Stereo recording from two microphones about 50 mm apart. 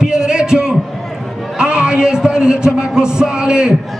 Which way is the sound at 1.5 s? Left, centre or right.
Centre.